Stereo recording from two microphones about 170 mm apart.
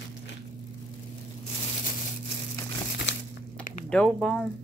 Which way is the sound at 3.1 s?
90° left.